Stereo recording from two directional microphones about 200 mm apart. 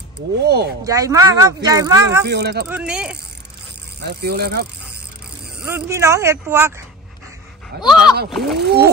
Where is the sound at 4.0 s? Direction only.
55° right (ahead or behind).